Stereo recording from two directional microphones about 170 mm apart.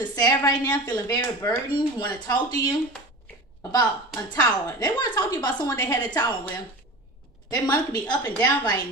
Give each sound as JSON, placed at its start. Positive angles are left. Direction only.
{"t": 0.1, "sound": "a woman's voice", "side_deg": 20}
{"t": 3.7, "sound": "a woman's voice", "side_deg": 20}
{"t": 7.4, "sound": "a woman's voice", "side_deg": 20}
{"t": 8.2, "sound": "speech", "side_deg": 10}